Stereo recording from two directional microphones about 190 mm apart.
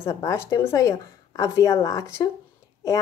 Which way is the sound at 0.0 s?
15° left (ahead or behind).